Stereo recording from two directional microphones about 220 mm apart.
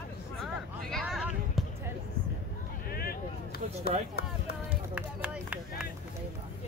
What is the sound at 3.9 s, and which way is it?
Run, 45° left (ahead or behind).